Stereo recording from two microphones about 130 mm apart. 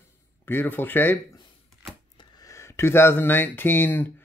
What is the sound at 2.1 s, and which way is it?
Speech, 30° left (ahead or behind).